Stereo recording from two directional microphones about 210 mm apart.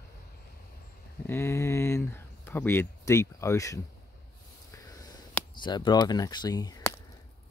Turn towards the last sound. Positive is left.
turn(degrees=15)  # may be behind; listen again after turning